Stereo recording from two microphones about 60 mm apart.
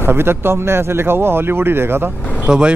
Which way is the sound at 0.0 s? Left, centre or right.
Right.